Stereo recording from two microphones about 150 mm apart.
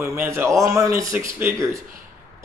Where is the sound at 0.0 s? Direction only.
20° right (ahead or behind).